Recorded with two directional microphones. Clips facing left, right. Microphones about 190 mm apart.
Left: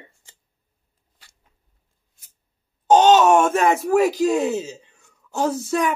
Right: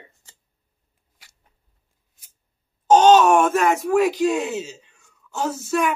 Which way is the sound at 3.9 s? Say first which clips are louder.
Left 1 dB; 40° left (ahead or behind).